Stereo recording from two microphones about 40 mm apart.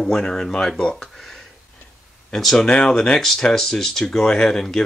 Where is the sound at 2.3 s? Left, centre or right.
Centre.